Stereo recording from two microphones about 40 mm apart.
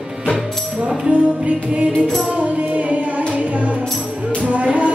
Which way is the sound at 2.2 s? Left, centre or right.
Right.